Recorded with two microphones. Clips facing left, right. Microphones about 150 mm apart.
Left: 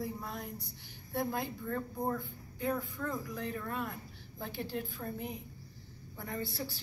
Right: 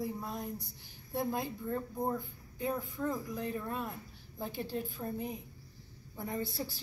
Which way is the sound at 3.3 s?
25° right (ahead or behind).